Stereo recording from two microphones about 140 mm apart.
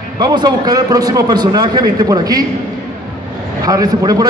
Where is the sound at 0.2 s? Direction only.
30° right (ahead or behind).